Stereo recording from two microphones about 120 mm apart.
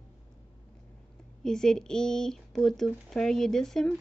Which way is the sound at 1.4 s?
5° left (ahead or behind).